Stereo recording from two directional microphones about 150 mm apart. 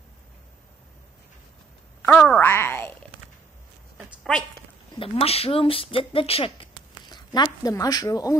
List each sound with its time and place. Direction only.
2.0 s speech: 10° left (ahead or behind)
4.2 s a sound: 5° left (ahead or behind)
4.9 s speech: 40° left (ahead or behind)